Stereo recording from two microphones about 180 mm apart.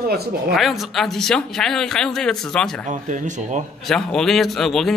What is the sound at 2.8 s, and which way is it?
Speech, 45° right (ahead or behind).